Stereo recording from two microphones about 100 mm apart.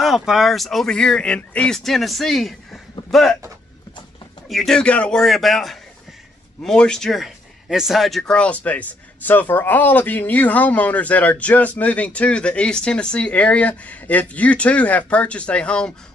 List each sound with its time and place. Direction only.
0.0 s speech: 5° right (ahead or behind)
4.5 s speech: 5° left (ahead or behind)